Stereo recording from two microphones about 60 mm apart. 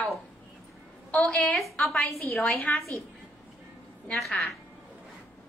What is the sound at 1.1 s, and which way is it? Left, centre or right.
Speech, left.